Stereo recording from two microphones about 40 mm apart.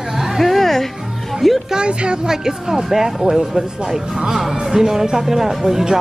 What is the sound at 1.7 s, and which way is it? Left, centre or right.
Speech, right.